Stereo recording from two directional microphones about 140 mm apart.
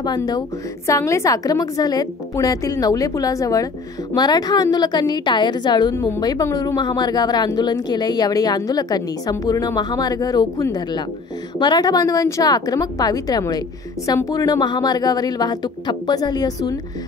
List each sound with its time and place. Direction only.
0.0 s speech: 30° left (ahead or behind)
5.9 s speech: 20° left (ahead or behind)